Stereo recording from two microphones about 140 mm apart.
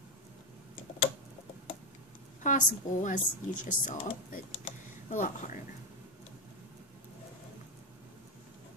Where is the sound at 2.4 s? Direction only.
65° left (ahead or behind).